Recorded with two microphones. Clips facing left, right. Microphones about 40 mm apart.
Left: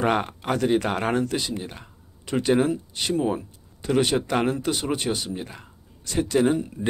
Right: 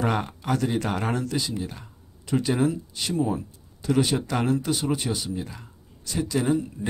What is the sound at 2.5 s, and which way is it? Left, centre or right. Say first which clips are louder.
Speech: left 4 dB; left.